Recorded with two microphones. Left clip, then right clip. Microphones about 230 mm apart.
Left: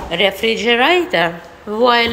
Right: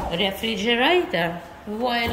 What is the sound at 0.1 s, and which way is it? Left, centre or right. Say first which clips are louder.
A woman's voice: left 12 dB; centre.